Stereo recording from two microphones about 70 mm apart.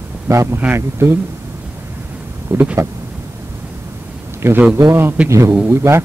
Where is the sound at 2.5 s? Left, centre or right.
Right.